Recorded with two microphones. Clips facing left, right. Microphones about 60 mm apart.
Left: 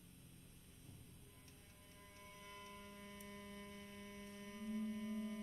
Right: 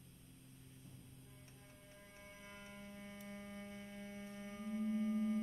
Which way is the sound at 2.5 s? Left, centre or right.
Right.